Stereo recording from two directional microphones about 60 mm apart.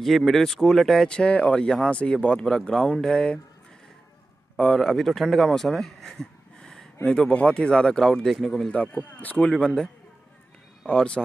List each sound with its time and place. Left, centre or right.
0.0 s speech: centre
4.6 s speech: centre
8.8 s speech: left
10.9 s speech: centre